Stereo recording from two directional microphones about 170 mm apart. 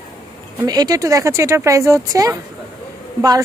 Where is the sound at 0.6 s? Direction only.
20° right (ahead or behind).